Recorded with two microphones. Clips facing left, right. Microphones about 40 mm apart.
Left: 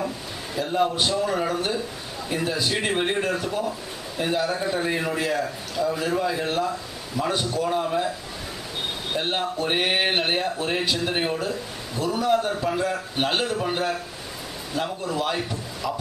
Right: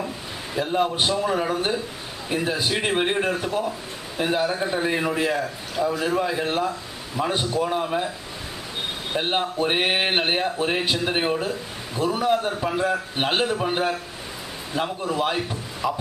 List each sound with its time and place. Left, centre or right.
0.6 s speech: centre
9.1 s speech: centre